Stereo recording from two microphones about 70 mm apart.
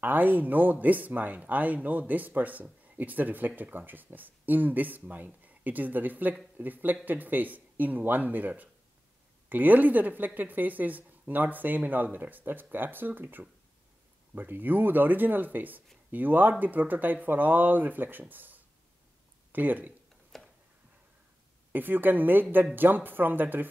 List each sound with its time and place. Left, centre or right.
0.0 s speech: right
20.3 s a sound: centre
21.7 s speech: right